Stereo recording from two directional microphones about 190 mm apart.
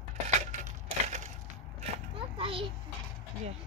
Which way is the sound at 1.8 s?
30° right (ahead or behind).